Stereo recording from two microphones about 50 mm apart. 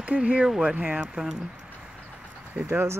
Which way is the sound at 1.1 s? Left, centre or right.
Centre.